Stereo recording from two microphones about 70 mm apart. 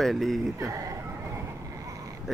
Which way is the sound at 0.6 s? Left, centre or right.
Right.